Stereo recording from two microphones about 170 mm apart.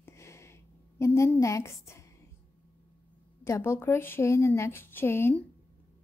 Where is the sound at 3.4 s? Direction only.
15° left (ahead or behind).